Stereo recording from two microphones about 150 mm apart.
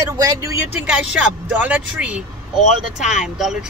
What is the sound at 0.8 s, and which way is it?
Speech, 5° right (ahead or behind).